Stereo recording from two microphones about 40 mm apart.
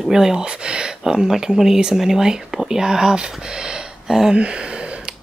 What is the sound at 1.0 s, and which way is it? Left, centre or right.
Speech, centre.